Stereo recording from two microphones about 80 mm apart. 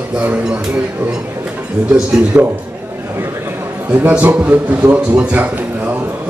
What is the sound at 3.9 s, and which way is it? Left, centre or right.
A man's voice, right.